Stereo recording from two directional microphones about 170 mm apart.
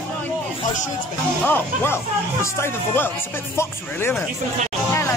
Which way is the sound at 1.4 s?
15° left (ahead or behind).